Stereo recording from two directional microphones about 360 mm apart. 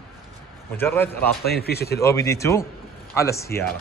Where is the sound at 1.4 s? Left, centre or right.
Left.